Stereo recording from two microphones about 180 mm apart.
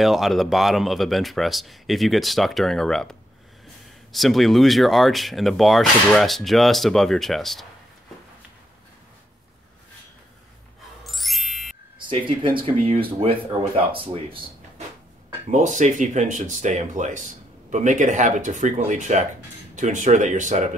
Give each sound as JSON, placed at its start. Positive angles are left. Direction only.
{"t": 0.0, "sound": "speech", "side_deg": 0}
{"t": 11.1, "sound": "ding", "side_deg": 0}
{"t": 12.1, "sound": "speech", "side_deg": -30}
{"t": 15.5, "sound": "speech", "side_deg": -45}